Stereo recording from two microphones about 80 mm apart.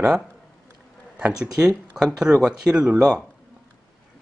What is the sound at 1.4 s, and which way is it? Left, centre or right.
Speech, centre.